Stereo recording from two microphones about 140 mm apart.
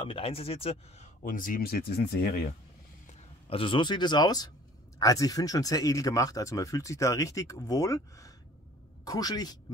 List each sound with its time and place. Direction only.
0.0 s speech: 40° left (ahead or behind)
1.2 s speech: 75° left (ahead or behind); by 2.5 s 90° left
3.4 s speech: 40° left (ahead or behind)